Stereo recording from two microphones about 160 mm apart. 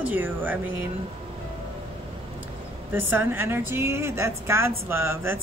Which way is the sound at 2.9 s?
10° right (ahead or behind).